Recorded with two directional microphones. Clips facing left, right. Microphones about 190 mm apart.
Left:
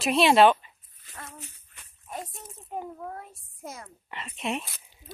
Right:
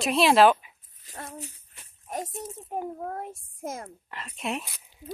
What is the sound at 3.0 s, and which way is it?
Speech, 50° right (ahead or behind).